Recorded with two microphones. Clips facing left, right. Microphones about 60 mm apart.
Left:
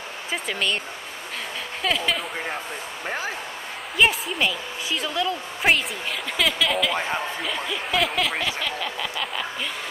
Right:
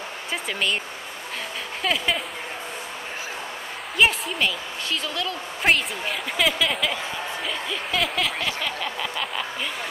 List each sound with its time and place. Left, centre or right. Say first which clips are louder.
0.3 s a woman's voice: even; centre
1.8 s a woman's voice: even; centre
3.9 s a woman's voice: even; centre